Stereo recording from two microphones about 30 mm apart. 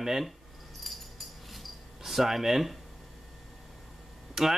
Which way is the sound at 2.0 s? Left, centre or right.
Centre.